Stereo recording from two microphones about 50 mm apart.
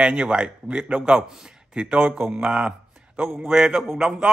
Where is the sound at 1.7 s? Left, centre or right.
Right.